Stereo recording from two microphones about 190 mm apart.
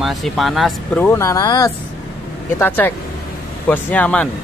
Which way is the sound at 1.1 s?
15° left (ahead or behind).